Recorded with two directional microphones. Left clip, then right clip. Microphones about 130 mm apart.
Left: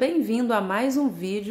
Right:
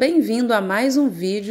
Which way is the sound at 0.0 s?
25° right (ahead or behind).